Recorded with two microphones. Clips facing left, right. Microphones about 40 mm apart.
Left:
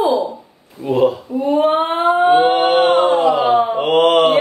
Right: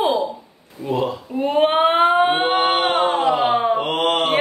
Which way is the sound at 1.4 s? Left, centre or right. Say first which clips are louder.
Left 2 dB; right.